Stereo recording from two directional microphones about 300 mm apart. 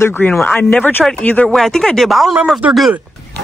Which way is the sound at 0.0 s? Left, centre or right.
Centre.